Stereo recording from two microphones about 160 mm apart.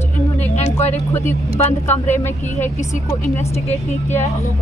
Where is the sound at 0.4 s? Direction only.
45° left (ahead or behind).